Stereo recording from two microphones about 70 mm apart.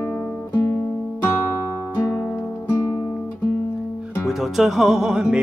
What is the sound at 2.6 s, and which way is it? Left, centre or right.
Music, left.